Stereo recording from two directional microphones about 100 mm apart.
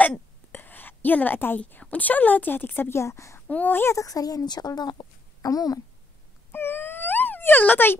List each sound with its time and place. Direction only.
0.0 s a woman's voice: 15° left (ahead or behind)
3.4 s speech: 15° left (ahead or behind); by 5.8 s 40° left (ahead or behind)
6.5 s wail: 20° left (ahead or behind)